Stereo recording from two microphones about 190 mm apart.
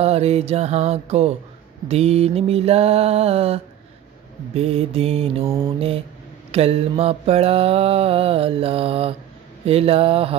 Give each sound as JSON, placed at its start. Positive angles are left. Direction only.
{"t": 0.0, "sound": "mantra", "side_deg": -35}